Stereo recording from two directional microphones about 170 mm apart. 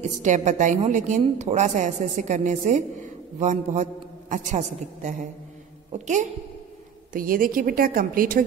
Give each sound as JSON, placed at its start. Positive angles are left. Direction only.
{"t": 0.2, "sound": "a woman's voice", "side_deg": -45}